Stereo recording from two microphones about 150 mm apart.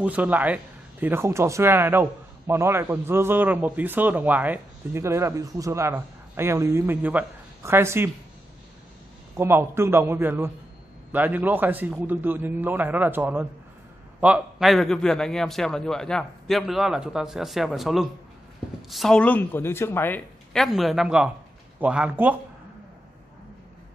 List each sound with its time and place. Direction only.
0.0 s a man's voice: 10° right (ahead or behind)
9.4 s a man's voice: 15° right (ahead or behind); by 20.2 s 15° left (ahead or behind)
20.5 s a man's voice: centre (ahead or behind)